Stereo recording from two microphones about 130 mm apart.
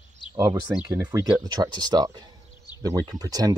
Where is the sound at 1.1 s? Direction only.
30° right (ahead or behind).